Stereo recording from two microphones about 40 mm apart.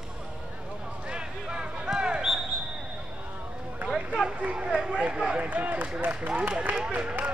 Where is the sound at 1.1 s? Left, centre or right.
Right.